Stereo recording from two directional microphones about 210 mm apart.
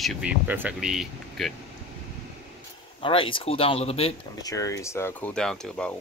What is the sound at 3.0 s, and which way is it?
Speech, 25° left (ahead or behind).